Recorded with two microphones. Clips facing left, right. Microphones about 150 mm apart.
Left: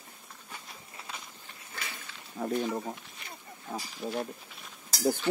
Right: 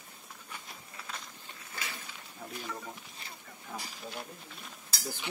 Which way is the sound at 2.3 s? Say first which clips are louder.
Left 14 dB; 55° left (ahead or behind).